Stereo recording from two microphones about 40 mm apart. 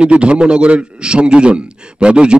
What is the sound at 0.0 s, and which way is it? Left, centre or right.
A man's voice, right.